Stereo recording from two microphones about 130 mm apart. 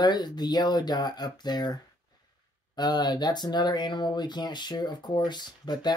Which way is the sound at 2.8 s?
35° left (ahead or behind).